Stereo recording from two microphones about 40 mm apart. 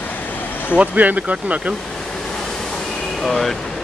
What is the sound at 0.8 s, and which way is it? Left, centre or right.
Speech, right.